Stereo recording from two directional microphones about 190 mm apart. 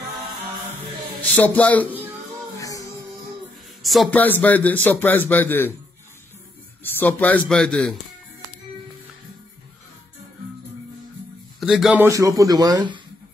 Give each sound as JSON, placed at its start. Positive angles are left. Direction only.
{"t": 1.2, "sound": "a man's voice", "side_deg": 10}
{"t": 2.6, "sound": "music", "side_deg": 15}
{"t": 3.8, "sound": "a man's voice", "side_deg": 0}
{"t": 6.8, "sound": "a man's voice", "side_deg": 10}
{"t": 11.6, "sound": "a man's voice", "side_deg": 0}
{"t": 12.0, "sound": "a man's voice", "side_deg": -15}